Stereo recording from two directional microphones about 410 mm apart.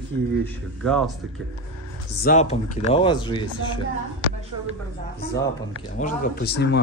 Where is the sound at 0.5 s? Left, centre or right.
Centre.